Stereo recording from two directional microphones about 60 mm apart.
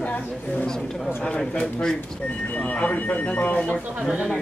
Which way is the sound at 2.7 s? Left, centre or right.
Left.